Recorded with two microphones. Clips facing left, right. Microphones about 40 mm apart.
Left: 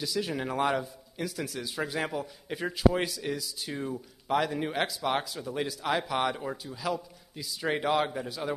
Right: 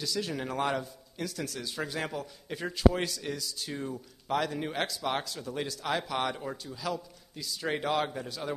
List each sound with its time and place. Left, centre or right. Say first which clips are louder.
0.0 s a man's voice: left 2 dB; centre